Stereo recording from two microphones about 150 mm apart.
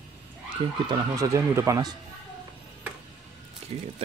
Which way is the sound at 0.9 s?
20° right (ahead or behind).